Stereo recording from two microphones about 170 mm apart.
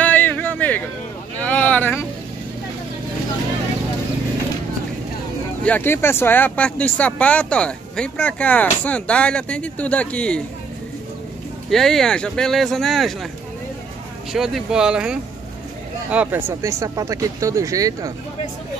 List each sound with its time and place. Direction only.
0.0 s a sound: 10° left (ahead or behind)
1.4 s vehicle: 10° left (ahead or behind)
5.6 s speech: 10° left (ahead or behind)
11.7 s speech: centre (ahead or behind)
14.3 s speech: centre (ahead or behind); by 18.1 s 20° right (ahead or behind)